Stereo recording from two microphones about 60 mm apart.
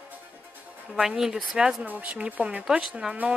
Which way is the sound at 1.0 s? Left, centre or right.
Centre.